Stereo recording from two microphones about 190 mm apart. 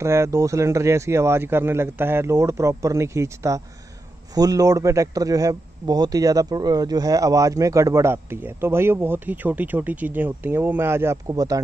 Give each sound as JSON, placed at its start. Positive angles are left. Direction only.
{"t": 0.0, "sound": "a man's voice", "side_deg": -15}